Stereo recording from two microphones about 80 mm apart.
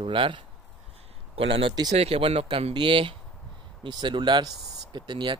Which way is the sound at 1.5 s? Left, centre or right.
Right.